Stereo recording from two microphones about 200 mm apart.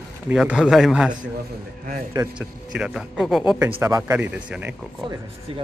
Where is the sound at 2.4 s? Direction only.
5° right (ahead or behind).